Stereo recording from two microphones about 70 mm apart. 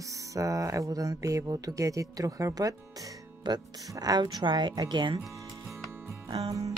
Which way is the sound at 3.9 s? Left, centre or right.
Right.